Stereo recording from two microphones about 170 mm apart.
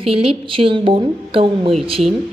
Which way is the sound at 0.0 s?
35° right (ahead or behind).